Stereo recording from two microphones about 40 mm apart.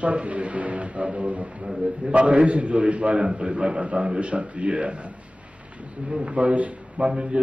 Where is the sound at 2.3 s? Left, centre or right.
Right.